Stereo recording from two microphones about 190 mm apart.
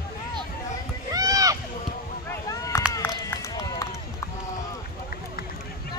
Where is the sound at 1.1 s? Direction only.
20° right (ahead or behind).